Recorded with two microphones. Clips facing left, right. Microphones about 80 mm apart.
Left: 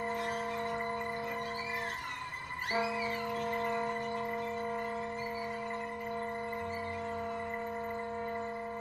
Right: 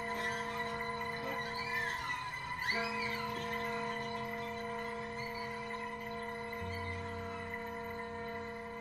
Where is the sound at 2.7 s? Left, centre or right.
Left.